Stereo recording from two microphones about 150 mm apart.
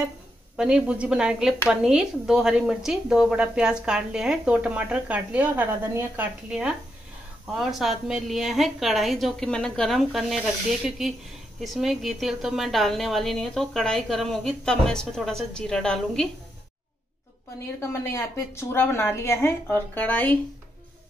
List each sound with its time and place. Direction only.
0.6 s a woman's voice: 5° right (ahead or behind)
17.7 s a woman's voice: 15° left (ahead or behind)